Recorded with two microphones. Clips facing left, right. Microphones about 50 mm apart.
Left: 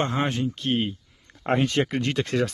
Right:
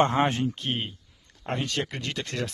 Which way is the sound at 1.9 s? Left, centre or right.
Centre.